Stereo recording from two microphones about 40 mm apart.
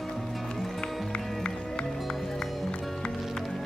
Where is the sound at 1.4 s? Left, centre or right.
Left.